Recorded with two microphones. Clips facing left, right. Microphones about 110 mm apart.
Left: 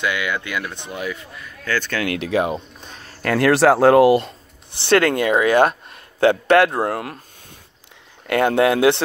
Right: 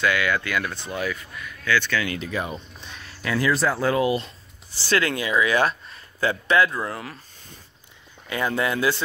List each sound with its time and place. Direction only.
0.0 s speech: 20° left (ahead or behind)
1.6 s speech: 45° left (ahead or behind)
2.0 s speech: 75° left (ahead or behind)
2.8 s speech: 40° left (ahead or behind); by 7.2 s 60° left (ahead or behind)
8.3 s speech: 70° left (ahead or behind)